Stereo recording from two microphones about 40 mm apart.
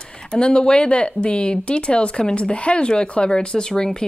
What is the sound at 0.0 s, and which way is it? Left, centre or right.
Speech, centre.